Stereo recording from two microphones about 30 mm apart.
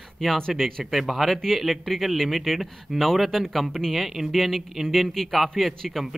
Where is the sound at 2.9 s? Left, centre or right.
Centre.